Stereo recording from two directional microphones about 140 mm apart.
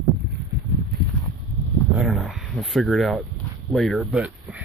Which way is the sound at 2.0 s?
Centre (ahead or behind).